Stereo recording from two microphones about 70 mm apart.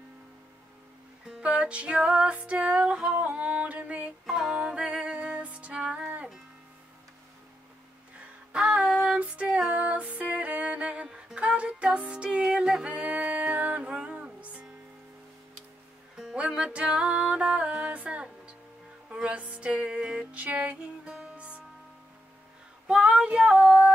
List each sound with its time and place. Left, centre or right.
1.4 s music: centre
8.5 s music: centre
16.3 s music: centre
22.8 s female singing: centre
23.6 s female singing: centre